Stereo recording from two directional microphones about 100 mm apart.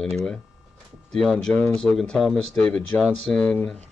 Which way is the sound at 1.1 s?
5° left (ahead or behind).